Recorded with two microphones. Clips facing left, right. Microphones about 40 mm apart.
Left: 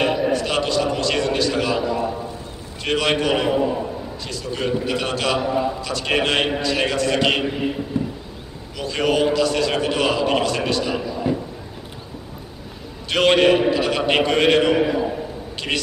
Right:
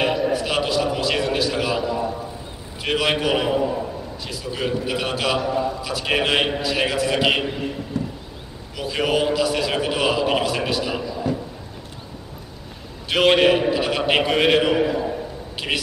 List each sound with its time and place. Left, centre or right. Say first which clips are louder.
0.3 s a sound: left 1 dB; centre
2.8 s a man's voice: left 1 dB; centre
3.6 s a sound: left 1 dB; centre
4.3 s a man's voice: left 2 dB; centre
5.4 s speech: left 1 dB; centre
5.8 s a man's voice: left 1 dB; centre
7.6 s speech: left 3 dB; centre
8.7 s a man's voice: left 1 dB; centre
11.1 s a sound: left 2 dB; centre
13.1 s a man's voice: left 1 dB; centre
14.8 s a man's voice: left 1 dB; centre